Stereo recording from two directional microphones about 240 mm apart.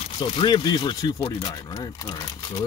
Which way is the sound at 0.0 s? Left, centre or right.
Left.